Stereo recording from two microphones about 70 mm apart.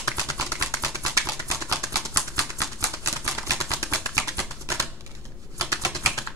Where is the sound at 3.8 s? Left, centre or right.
Right.